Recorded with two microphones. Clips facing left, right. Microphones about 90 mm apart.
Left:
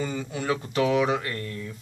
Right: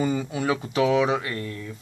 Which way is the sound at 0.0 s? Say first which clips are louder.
Right 5 dB; 10° right (ahead or behind).